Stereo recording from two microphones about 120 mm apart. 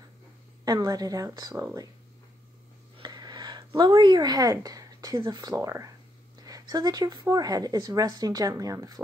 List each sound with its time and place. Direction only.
0.7 s speech: 30° right (ahead or behind)
3.0 s speech: 35° right (ahead or behind)